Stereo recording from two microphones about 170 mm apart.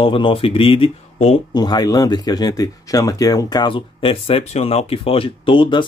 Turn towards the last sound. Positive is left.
turn(degrees=30)  # may be behind; listen again after turning